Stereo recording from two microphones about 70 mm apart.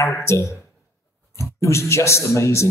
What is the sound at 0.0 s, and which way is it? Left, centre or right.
A man's voice, left.